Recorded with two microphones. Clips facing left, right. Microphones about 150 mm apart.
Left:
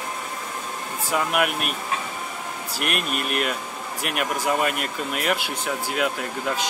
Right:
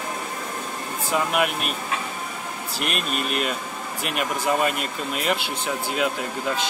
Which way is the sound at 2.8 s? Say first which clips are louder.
Left 1 dB; 60° left (ahead or behind).